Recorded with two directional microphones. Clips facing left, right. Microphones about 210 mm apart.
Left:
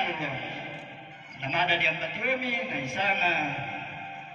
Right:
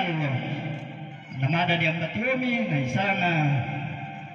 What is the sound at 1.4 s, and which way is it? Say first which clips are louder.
A man's voice: right 4 dB; 55° right (ahead or behind).